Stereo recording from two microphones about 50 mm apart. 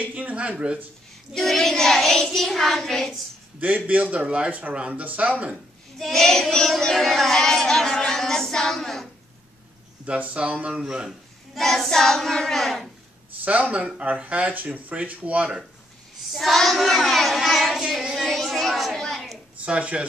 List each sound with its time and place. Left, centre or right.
0.0 s speech: right
1.3 s child singing: centre
3.5 s speech: right
5.9 s child singing: centre
10.0 s speech: right
10.8 s a man's voice: centre
11.1 s child singing: centre
13.4 s speech: right
16.3 s child singing: centre
18.1 s a sound: centre
19.6 s speech: right